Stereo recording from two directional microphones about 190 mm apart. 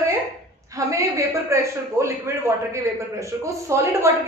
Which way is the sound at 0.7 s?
15° right (ahead or behind).